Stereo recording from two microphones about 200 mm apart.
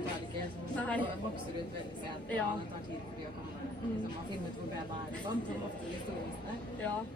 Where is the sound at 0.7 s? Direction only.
5° left (ahead or behind).